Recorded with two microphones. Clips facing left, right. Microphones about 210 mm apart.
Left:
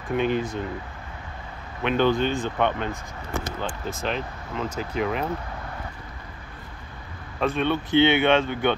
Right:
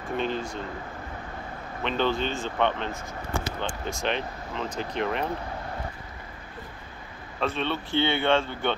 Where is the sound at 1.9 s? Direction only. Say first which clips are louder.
Left 5 dB; 10° left (ahead or behind).